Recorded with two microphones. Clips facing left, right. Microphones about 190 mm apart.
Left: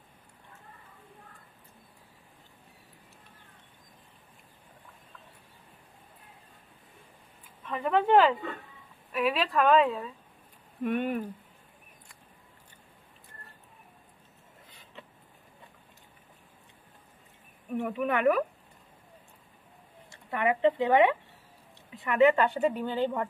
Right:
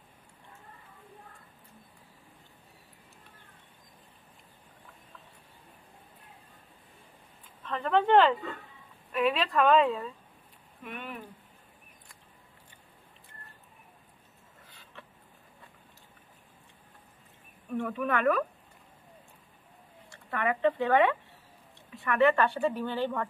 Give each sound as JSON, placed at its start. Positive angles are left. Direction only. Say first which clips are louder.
{"t": 7.4, "sound": "speech", "louder": "left 2 dB", "side_deg": 10}
{"t": 10.8, "sound": "speech", "louder": "left 12 dB", "side_deg": 50}
{"t": 17.6, "sound": "speech", "louder": "left 1 dB", "side_deg": 15}
{"t": 20.2, "sound": "speech", "louder": "left 2 dB", "side_deg": 15}